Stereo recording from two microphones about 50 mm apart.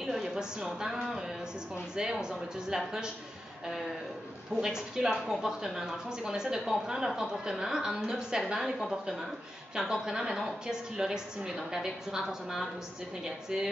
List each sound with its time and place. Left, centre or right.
0.0 s speech: centre
4.6 s speech: centre